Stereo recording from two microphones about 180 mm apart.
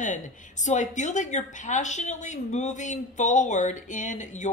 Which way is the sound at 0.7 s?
40° left (ahead or behind).